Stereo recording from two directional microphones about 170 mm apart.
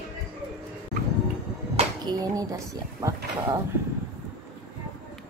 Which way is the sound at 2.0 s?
20° right (ahead or behind).